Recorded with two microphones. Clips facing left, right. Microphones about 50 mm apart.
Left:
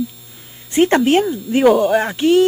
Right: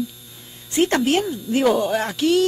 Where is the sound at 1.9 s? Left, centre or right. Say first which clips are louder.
Left 5 dB; left.